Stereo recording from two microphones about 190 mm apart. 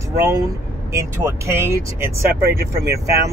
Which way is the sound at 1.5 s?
15° right (ahead or behind).